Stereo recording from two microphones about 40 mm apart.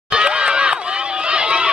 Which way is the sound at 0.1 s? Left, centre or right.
Right.